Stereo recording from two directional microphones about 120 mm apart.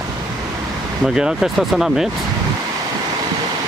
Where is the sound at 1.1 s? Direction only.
5° right (ahead or behind).